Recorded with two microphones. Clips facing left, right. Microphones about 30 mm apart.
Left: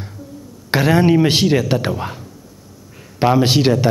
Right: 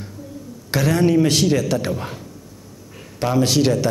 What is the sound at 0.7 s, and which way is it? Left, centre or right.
A man's voice, left.